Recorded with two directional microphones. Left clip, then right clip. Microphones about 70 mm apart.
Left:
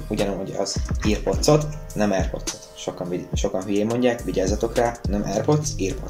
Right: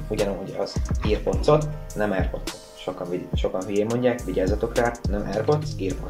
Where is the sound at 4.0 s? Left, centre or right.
Left.